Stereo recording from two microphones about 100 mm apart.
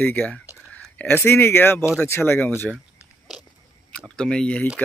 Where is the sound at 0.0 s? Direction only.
15° left (ahead or behind).